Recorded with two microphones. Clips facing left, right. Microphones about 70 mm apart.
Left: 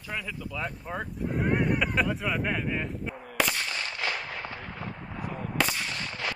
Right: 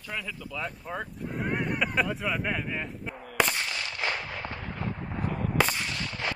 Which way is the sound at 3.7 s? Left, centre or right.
Left.